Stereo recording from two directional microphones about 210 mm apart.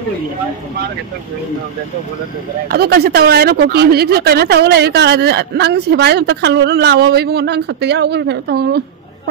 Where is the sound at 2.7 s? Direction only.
50° right (ahead or behind).